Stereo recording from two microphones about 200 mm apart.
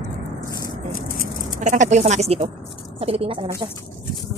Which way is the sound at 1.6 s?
35° right (ahead or behind).